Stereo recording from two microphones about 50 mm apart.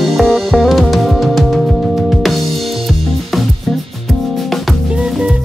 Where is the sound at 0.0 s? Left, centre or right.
Centre.